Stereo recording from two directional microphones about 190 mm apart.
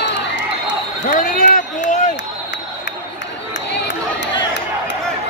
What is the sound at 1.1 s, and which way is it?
Run, 45° left (ahead or behind).